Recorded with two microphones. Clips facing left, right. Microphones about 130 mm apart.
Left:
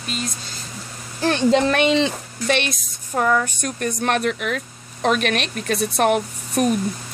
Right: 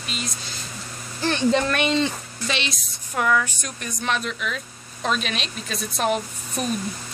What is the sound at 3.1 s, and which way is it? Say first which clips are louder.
Speech: left 3 dB; 35° left (ahead or behind).